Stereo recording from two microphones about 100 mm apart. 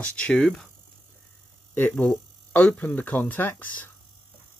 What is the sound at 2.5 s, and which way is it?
Speech, 15° left (ahead or behind).